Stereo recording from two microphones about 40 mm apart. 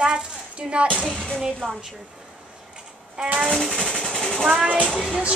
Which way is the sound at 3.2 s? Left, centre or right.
Right.